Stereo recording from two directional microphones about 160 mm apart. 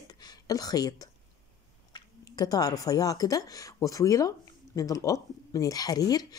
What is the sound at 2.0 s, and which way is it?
A woman's voice, 25° left (ahead or behind).